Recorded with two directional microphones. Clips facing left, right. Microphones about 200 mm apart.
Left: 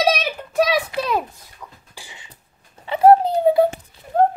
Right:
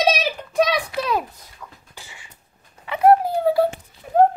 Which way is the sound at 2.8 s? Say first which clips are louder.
Left 3 dB; 30° left (ahead or behind).